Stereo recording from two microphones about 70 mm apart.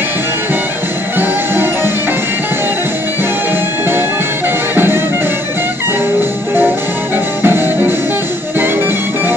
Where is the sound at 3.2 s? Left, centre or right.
Right.